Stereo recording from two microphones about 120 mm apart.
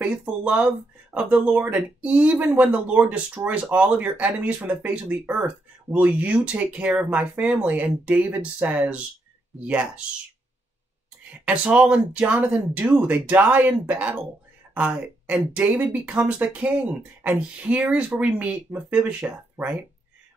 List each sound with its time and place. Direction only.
0.0 s speech: 10° right (ahead or behind)
11.4 s speech: 10° right (ahead or behind)